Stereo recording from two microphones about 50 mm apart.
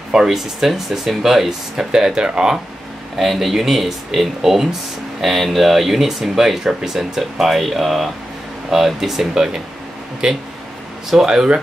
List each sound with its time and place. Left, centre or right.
0.1 s speech: centre
3.2 s speech: centre